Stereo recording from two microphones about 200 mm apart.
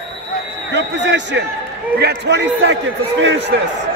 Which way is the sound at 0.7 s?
65° right (ahead or behind).